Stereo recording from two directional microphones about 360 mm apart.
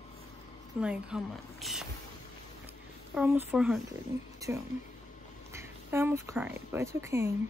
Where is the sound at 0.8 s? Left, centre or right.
Centre.